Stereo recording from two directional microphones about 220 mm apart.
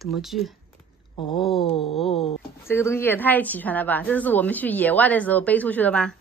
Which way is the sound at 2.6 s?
10° left (ahead or behind).